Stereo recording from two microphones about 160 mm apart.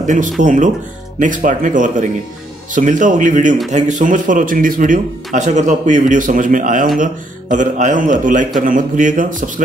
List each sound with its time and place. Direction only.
0.0 s a man's voice: 50° right (ahead or behind)